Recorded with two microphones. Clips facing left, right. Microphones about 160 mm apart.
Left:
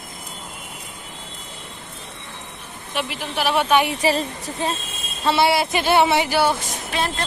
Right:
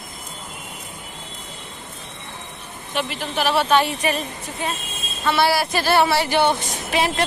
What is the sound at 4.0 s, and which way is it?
Speech, 30° left (ahead or behind).